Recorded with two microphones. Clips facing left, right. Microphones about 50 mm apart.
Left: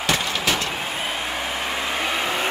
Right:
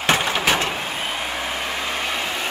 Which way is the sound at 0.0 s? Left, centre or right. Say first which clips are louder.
Right 3 dB; right.